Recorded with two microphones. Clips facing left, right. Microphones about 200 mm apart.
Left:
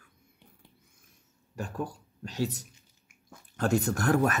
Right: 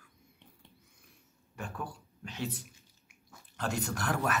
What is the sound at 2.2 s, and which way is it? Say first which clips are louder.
Speech: left 6 dB; 40° left (ahead or behind).